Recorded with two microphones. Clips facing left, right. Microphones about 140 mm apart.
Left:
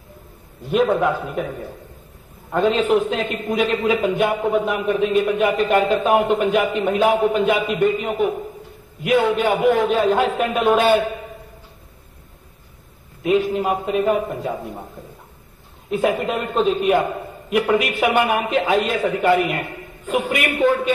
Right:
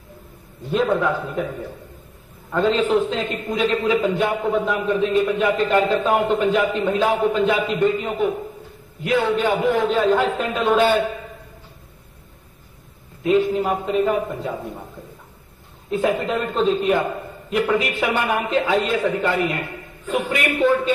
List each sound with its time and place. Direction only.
0.7 s a man's voice: 15° left (ahead or behind)
2.5 s a man's voice: 15° left (ahead or behind)
13.2 s a man's voice: 20° left (ahead or behind)
15.9 s a man's voice: 15° left (ahead or behind)